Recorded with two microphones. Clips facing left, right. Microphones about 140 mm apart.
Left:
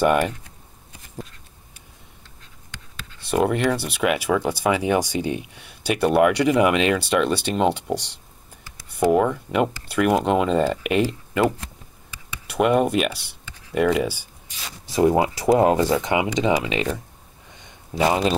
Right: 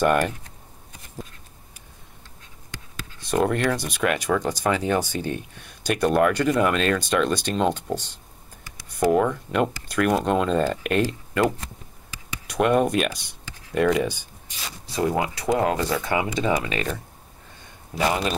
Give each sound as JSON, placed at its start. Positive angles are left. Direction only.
{"t": 0.0, "sound": "speech", "side_deg": 10}
{"t": 3.3, "sound": "speech", "side_deg": 10}
{"t": 9.1, "sound": "speech", "side_deg": 5}
{"t": 12.4, "sound": "speech", "side_deg": 5}
{"t": 15.0, "sound": "speech", "side_deg": 25}
{"t": 17.6, "sound": "a sound", "side_deg": 20}